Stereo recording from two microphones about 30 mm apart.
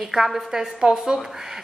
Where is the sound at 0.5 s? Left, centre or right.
Right.